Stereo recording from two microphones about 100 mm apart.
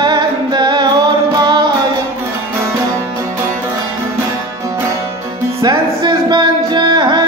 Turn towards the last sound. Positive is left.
turn(degrees=-45)  # may be behind; listen again after turning